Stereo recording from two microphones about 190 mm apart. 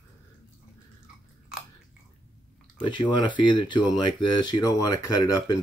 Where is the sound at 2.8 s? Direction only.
25° left (ahead or behind).